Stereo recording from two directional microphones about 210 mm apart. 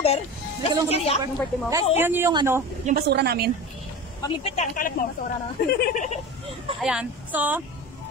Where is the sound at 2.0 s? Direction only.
10° right (ahead or behind).